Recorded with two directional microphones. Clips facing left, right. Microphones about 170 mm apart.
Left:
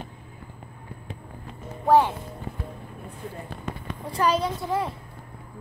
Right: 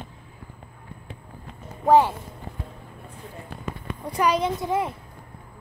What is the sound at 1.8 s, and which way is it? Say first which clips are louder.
Speech: right 2 dB; 15° right (ahead or behind).